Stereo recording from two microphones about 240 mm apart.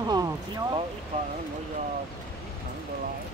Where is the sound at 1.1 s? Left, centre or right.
Right.